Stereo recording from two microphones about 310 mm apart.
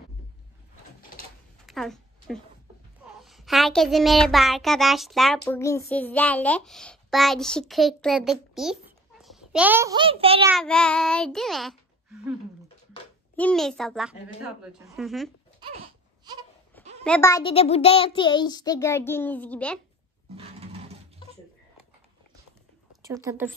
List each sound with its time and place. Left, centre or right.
1.7 s a sound: centre
3.2 s child singing: centre
5.4 s a child's voice: centre
10.5 s speech: centre
13.4 s speech: centre
15.7 s baby cry: centre
17.0 s a child's voice: centre
20.3 s roaring cats: centre
23.0 s a woman's voice: centre